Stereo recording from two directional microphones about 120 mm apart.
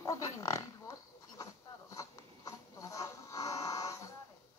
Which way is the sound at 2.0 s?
25° left (ahead or behind).